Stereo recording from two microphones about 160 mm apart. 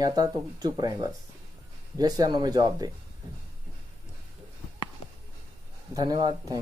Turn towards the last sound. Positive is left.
turn(degrees=-25)  # may be behind; listen again after turning